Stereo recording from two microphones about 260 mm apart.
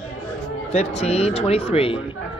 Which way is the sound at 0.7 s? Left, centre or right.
Left.